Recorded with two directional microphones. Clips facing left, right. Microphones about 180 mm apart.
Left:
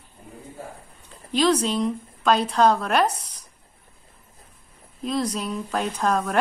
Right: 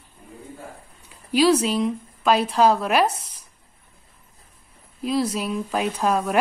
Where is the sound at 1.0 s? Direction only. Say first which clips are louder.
Right 3 dB; 10° right (ahead or behind).